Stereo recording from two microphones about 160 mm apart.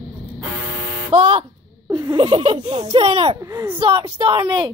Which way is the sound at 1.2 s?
35° right (ahead or behind).